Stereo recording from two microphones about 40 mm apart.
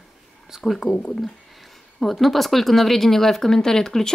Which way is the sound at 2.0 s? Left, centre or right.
Centre.